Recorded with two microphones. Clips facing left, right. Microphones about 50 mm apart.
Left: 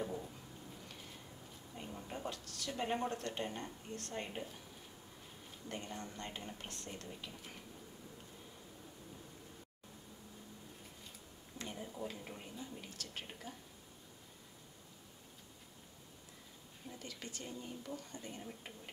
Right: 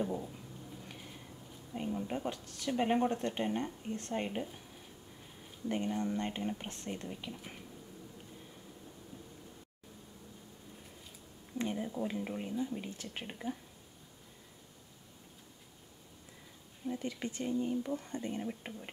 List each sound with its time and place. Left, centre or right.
0.0 s a sound: centre
1.7 s a sound: right
2.0 s speech: right
5.7 s speech: right
11.5 s speech: right
16.9 s speech: right